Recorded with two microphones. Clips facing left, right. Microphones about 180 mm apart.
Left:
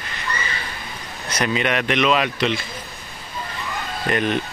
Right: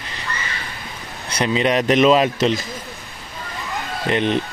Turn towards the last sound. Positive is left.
turn(degrees=-25)  # may be behind; listen again after turning